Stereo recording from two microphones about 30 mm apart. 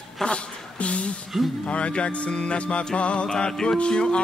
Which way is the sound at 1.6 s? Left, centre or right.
Left.